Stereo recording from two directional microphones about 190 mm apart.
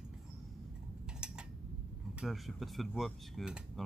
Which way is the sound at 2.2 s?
Centre (ahead or behind).